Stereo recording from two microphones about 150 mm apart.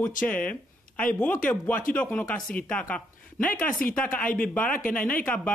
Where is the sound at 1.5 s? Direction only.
10° left (ahead or behind).